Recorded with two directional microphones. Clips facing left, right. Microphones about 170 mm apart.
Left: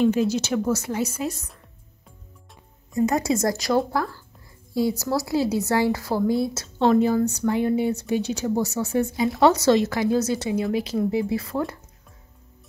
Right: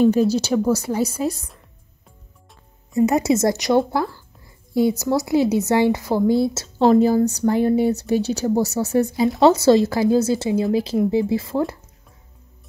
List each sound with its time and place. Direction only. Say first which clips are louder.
0.0 s speech: right 4 dB; 40° right (ahead or behind)
2.9 s a woman's voice: right 4 dB; 20° right (ahead or behind)